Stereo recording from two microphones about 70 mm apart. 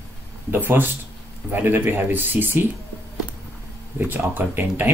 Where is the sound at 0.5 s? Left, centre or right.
Right.